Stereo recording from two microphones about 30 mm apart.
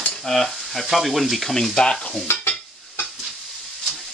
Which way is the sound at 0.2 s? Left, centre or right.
Centre.